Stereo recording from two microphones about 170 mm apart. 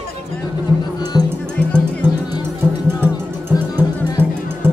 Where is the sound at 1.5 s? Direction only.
5° left (ahead or behind).